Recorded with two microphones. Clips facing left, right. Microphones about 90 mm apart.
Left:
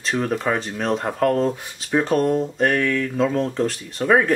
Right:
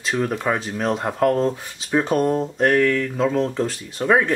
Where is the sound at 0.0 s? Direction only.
Centre (ahead or behind).